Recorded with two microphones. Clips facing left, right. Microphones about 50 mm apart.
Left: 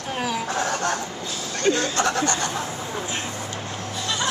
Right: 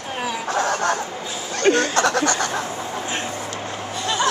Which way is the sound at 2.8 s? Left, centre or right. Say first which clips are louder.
Right 2 dB; centre.